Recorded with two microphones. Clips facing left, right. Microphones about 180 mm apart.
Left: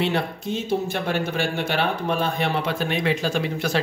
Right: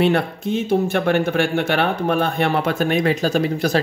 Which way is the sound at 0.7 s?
55° right (ahead or behind).